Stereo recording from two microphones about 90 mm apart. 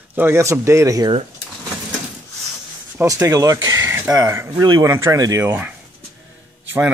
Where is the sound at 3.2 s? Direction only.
40° right (ahead or behind).